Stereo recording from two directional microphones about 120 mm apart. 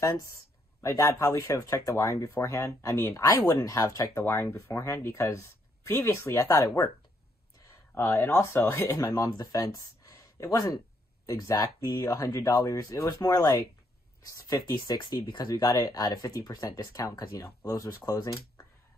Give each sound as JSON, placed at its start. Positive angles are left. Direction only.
{"t": 0.0, "sound": "a sound", "side_deg": 25}
{"t": 0.9, "sound": "speech", "side_deg": 30}
{"t": 7.9, "sound": "speech", "side_deg": 20}